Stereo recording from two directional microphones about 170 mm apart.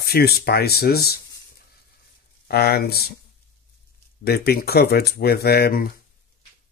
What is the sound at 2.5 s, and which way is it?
Speech, 70° left (ahead or behind).